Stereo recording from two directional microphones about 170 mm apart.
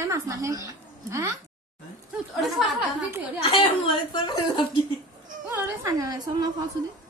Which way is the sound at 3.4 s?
30° left (ahead or behind).